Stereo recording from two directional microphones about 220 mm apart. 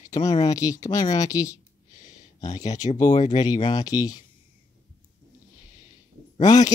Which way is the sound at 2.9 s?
30° left (ahead or behind).